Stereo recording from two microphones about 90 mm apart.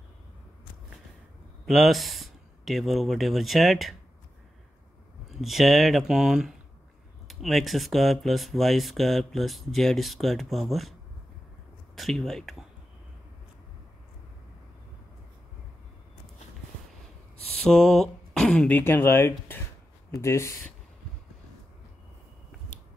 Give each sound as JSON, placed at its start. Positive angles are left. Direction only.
{"t": 1.7, "sound": "speech", "side_deg": 0}
{"t": 5.4, "sound": "speech", "side_deg": 0}
{"t": 17.6, "sound": "a sound", "side_deg": 5}
{"t": 18.7, "sound": "speech", "side_deg": 20}